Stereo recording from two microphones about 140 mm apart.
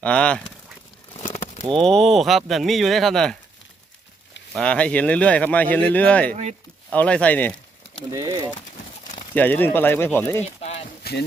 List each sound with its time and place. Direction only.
0.0 s speech: 10° left (ahead or behind)
1.1 s a sound: 55° left (ahead or behind)
1.8 s speech: 5° left (ahead or behind)
4.6 s speech: 10° left (ahead or behind)
8.1 s speech: 25° right (ahead or behind)
9.3 s speech: 15° left (ahead or behind)
10.4 s clip-clop: 50° left (ahead or behind)